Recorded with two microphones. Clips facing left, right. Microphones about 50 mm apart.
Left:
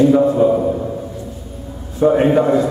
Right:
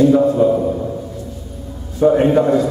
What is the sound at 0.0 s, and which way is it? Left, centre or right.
Speech, centre.